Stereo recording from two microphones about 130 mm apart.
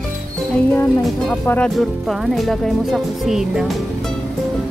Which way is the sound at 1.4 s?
15° left (ahead or behind).